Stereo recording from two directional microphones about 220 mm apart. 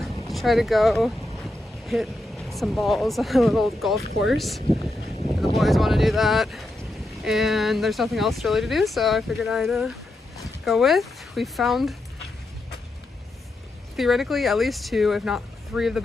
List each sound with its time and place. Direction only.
0.0 s speech: centre (ahead or behind)
13.9 s speech: centre (ahead or behind)